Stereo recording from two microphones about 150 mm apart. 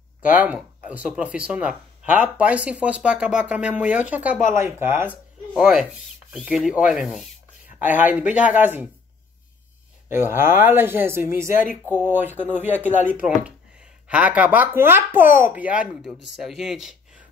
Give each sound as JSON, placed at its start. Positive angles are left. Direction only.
{"t": 0.4, "sound": "speech", "side_deg": -10}
{"t": 5.5, "sound": "rub", "side_deg": -5}
{"t": 7.8, "sound": "speech", "side_deg": -10}
{"t": 10.3, "sound": "speech", "side_deg": -15}